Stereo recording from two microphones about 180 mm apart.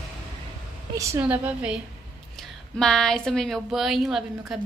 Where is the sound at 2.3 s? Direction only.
5° left (ahead or behind).